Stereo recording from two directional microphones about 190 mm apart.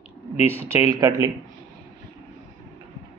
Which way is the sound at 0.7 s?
20° right (ahead or behind).